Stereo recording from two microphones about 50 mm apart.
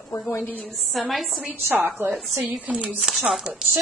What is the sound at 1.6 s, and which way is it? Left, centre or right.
A woman's voice, right.